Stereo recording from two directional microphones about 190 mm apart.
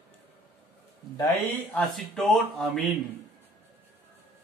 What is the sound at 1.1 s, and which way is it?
Speech, 15° left (ahead or behind).